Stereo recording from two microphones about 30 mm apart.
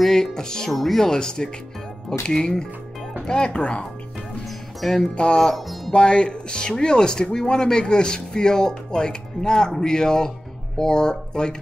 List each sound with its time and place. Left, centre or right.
0.1 s speech: left
0.7 s speech: centre
1.1 s speech: left
3.3 s speech: left
5.1 s speech: left